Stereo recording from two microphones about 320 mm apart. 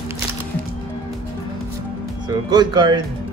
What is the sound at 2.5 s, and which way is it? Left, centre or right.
Speech, centre.